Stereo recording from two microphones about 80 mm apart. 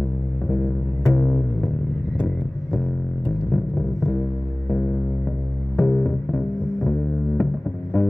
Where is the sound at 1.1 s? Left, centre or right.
Left.